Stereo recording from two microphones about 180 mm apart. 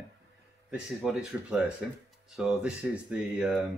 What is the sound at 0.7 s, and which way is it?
Speech, 5° right (ahead or behind).